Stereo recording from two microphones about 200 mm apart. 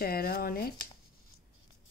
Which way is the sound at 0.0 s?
50° left (ahead or behind).